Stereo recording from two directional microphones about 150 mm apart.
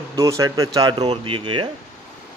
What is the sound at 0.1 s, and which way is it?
A man's voice, 20° right (ahead or behind).